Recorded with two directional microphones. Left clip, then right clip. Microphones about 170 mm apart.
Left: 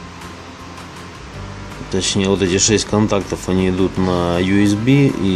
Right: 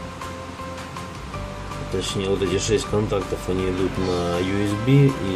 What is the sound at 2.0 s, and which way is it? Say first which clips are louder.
Speech: left 7 dB; 55° left (ahead or behind).